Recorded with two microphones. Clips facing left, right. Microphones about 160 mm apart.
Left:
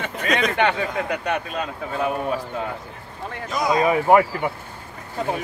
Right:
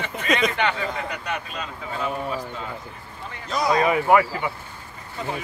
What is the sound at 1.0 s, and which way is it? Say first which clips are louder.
Speech: left 5 dB; 55° left (ahead or behind).